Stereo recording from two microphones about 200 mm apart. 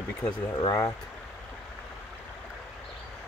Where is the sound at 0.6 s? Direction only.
20° left (ahead or behind).